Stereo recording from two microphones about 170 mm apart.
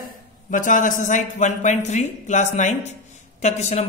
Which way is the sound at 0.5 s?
50° left (ahead or behind).